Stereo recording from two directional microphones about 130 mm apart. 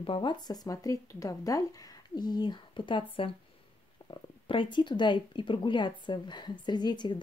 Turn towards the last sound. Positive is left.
turn(degrees=35)  # may be behind; listen again after turning